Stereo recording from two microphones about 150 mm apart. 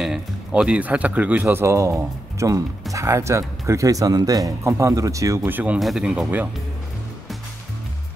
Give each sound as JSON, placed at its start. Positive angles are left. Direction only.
{"t": 0.0, "sound": "speech", "side_deg": -5}
{"t": 5.8, "sound": "speech", "side_deg": 0}